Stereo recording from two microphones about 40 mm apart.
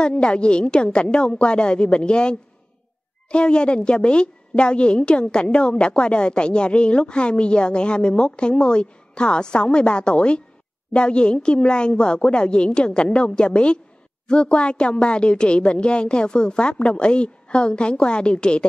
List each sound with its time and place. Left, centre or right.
0.0 s a woman's voice: left